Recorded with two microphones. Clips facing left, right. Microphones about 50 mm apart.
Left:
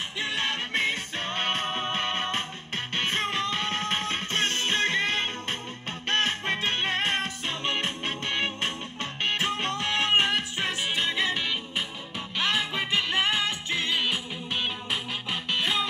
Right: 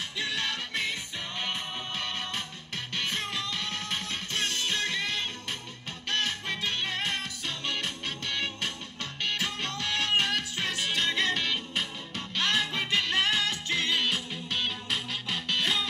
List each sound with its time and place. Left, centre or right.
0.2 s music: left; by 15.9 s centre